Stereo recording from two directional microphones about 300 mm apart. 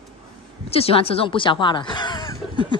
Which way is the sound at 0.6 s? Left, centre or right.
Centre.